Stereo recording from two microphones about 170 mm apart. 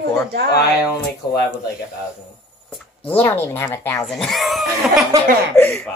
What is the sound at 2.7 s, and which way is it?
Speech, 10° left (ahead or behind).